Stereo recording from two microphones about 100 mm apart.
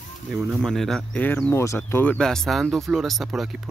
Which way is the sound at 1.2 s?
15° left (ahead or behind).